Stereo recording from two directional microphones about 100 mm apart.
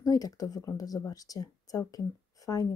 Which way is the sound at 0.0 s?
35° left (ahead or behind).